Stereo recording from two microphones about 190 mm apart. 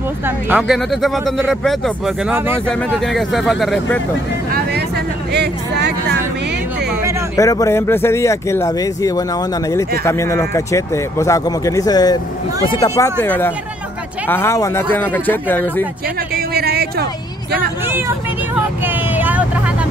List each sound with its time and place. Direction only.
0.5 s speech: 5° right (ahead or behind)
2.7 s speech: centre (ahead or behind)
4.5 s a sound: 55° right (ahead or behind)
7.3 s speech: 15° left (ahead or behind)
16.3 s a sound: 55° right (ahead or behind)
17.8 s speech: 10° right (ahead or behind)
18.9 s vehicle: 10° right (ahead or behind)